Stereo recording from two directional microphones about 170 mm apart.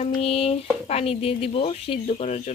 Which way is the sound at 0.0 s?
35° left (ahead or behind).